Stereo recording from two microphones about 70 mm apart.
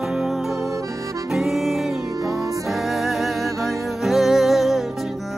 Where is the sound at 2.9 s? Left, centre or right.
Centre.